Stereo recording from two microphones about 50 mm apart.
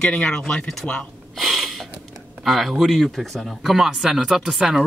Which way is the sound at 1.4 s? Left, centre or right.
Centre.